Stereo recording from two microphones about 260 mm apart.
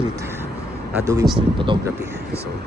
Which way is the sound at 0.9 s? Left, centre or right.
Centre.